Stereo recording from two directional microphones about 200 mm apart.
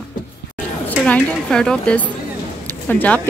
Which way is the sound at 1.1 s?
5° left (ahead or behind).